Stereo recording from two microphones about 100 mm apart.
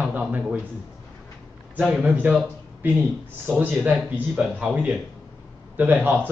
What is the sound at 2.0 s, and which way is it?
A man's voice, 15° right (ahead or behind).